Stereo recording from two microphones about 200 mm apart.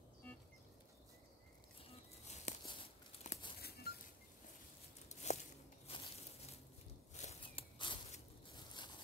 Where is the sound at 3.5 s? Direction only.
50° left (ahead or behind).